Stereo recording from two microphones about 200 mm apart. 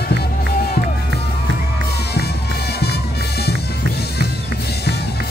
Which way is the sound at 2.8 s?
55° left (ahead or behind).